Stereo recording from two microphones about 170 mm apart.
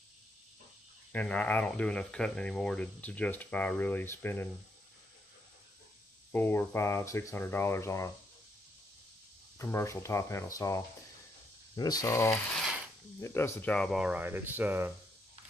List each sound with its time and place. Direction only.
1.1 s speech: 10° left (ahead or behind)
6.3 s speech: 10° left (ahead or behind)
9.6 s speech: 15° left (ahead or behind); by 14.9 s 10° right (ahead or behind)